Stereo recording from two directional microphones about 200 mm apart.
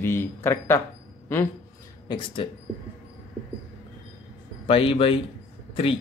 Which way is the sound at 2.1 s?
20° left (ahead or behind).